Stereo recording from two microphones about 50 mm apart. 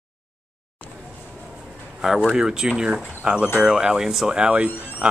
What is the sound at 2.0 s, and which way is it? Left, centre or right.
Speech, centre.